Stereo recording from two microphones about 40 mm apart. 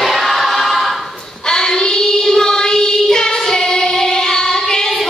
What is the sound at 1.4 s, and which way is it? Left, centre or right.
Child singing, centre.